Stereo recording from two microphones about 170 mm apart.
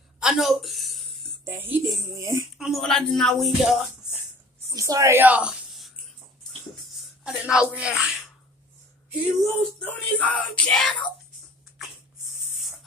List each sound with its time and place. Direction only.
0.2 s a sound: centre (ahead or behind)
1.4 s a woman's voice: 10° right (ahead or behind)
2.5 s speech: centre (ahead or behind)
4.6 s speech: 20° right (ahead or behind)
9.4 s speech: centre (ahead or behind)